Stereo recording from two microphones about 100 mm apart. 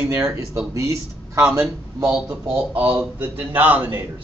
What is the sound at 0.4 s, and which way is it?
Speech, 30° right (ahead or behind).